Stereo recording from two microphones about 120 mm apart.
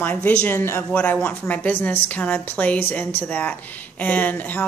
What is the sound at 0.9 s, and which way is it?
Speech, 10° left (ahead or behind).